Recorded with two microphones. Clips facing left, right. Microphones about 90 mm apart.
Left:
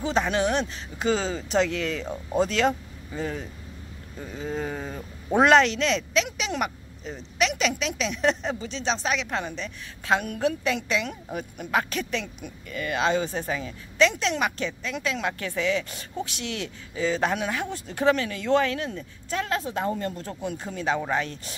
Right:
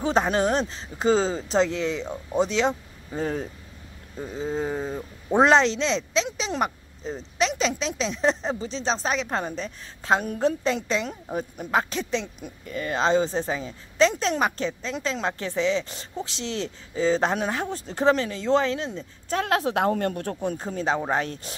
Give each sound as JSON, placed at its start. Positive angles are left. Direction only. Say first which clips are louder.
{"t": 0.0, "sound": "speech", "louder": "right 2 dB", "side_deg": -40}
{"t": 3.2, "sound": "speech", "louder": "right 3 dB", "side_deg": -40}
{"t": 4.2, "sound": "speech", "louder": "right 3 dB", "side_deg": -25}
{"t": 19.2, "sound": "a woman's voice", "louder": "right 3 dB", "side_deg": -45}
{"t": 19.5, "sound": "speech", "louder": "right 6 dB", "side_deg": -70}
{"t": 20.4, "sound": "speech", "louder": "right 1 dB", "side_deg": -40}